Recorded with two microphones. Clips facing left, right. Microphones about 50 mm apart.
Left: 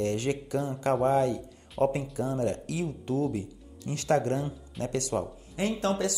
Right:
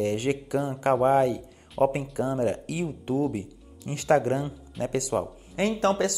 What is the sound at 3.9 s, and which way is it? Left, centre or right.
Speech, right.